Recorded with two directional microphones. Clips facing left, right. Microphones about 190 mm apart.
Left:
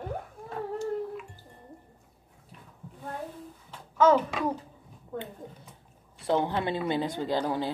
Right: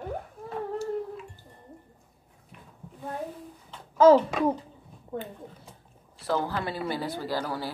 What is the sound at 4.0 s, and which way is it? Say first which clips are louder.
Speech: right 5 dB; 30° right (ahead or behind).